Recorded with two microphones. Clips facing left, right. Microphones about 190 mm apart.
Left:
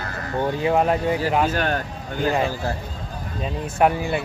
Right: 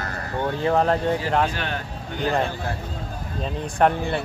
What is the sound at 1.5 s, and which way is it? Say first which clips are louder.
Speech: left 6 dB; 45° left (ahead or behind).